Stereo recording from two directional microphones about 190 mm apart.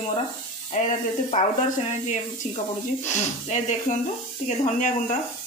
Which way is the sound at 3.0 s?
40° left (ahead or behind).